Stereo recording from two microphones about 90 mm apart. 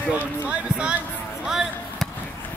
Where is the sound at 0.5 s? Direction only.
10° right (ahead or behind).